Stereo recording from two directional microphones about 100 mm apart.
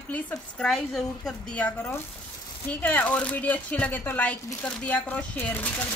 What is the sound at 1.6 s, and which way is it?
A woman's voice, 20° left (ahead or behind).